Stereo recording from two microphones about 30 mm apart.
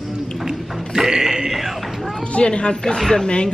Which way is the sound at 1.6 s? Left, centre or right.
Centre.